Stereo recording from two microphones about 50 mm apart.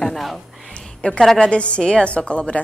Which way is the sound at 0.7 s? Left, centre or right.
Left.